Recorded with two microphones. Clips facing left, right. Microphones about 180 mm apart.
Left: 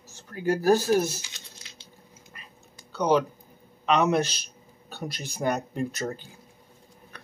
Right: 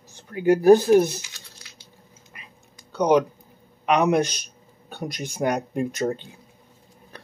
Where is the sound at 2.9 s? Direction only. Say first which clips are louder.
Right 4 dB; 15° right (ahead or behind).